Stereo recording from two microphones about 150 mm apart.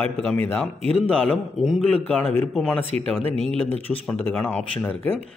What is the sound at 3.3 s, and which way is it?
Speech, 40° right (ahead or behind).